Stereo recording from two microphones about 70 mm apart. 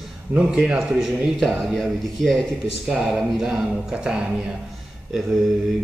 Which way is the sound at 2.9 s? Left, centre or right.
Centre.